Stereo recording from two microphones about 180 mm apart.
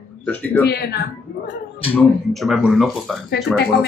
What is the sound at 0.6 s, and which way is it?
Speech, 65° left (ahead or behind).